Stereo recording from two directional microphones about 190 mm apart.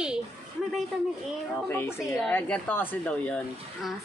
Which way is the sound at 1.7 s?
10° left (ahead or behind).